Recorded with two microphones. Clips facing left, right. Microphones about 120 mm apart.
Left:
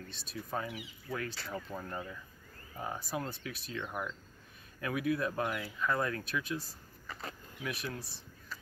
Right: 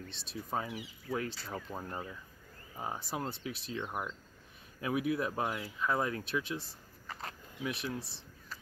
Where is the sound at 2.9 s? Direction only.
30° right (ahead or behind).